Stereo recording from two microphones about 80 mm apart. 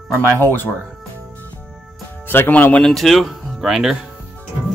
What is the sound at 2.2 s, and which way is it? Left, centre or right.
Speech, left.